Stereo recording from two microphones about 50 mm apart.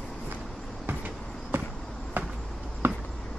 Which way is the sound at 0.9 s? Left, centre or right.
Right.